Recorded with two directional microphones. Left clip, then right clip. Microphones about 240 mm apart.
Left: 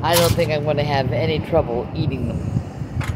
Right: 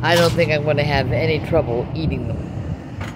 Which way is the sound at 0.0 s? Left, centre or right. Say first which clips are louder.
Right 1 dB; centre.